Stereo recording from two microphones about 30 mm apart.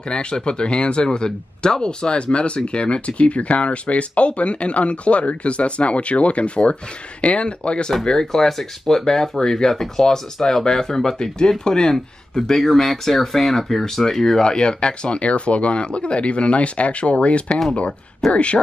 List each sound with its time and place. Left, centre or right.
0.1 s speech: left
8.0 s speech: left
8.3 s speech: centre
9.7 s speech: centre; by 12.0 s left
12.5 s speech: centre
14.4 s speech: left
15.1 s speech: left